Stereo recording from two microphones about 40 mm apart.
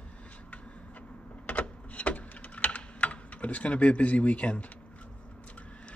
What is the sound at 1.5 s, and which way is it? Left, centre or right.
Typing, left.